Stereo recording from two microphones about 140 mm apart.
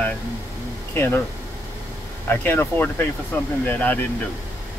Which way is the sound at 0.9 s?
15° left (ahead or behind).